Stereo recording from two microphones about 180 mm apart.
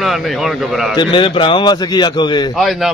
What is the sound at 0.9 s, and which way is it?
A man's voice, 25° left (ahead or behind).